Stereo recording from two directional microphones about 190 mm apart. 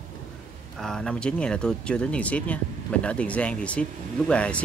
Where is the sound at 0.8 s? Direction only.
5° left (ahead or behind).